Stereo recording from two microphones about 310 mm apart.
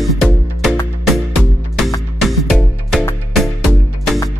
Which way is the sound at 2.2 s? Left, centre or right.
Centre.